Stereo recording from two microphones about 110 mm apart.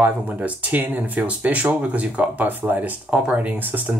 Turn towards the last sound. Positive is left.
turn(degrees=-15)  # may be behind; listen again after turning